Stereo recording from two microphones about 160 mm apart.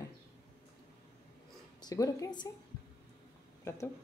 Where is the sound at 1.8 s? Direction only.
25° left (ahead or behind).